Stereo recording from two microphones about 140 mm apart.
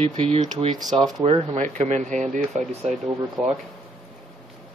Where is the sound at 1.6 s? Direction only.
60° right (ahead or behind).